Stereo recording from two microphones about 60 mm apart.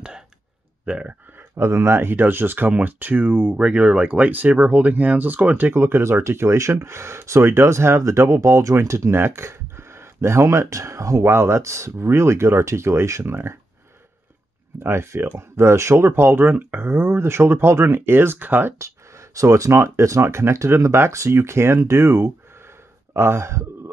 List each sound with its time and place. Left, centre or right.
0.8 s speech: right
1.6 s speech: right
3.5 s speech: centre; by 13.6 s right
14.8 s speech: right
18.8 s speech: right
21.8 s speech: right